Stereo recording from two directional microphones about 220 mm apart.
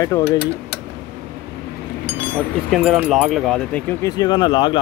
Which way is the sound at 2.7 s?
Centre (ahead or behind).